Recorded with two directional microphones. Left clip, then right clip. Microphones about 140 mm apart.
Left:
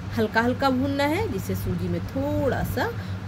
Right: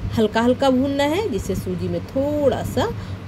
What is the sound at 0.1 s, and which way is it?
A woman's voice, 25° right (ahead or behind).